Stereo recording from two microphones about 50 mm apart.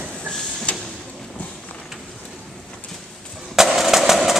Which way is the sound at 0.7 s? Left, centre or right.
Left.